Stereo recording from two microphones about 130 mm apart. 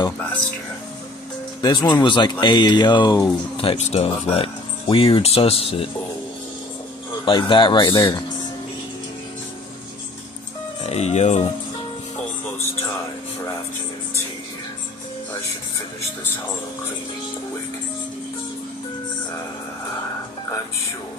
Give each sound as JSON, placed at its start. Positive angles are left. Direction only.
{"t": 1.6, "sound": "speech", "side_deg": 35}
{"t": 3.5, "sound": "speech", "side_deg": 50}
{"t": 7.2, "sound": "speech", "side_deg": 40}
{"t": 10.9, "sound": "speech", "side_deg": 55}